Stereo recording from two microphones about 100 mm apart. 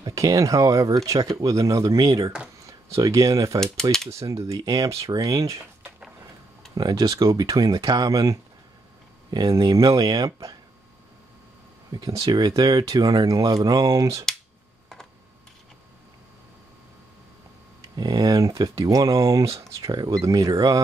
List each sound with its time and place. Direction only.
0.0 s speech: 35° right (ahead or behind)
6.7 s speech: 40° right (ahead or behind)
11.9 s speech: 40° right (ahead or behind)
17.8 s speech: 45° right (ahead or behind)
19.9 s speech: 45° right (ahead or behind)
20.2 s speech: 35° right (ahead or behind)